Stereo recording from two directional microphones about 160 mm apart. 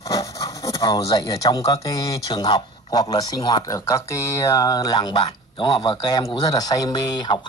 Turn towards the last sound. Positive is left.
turn(degrees=25)  # may be behind; listen again after turning